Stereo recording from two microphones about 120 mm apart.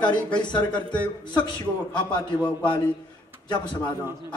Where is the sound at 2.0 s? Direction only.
40° left (ahead or behind).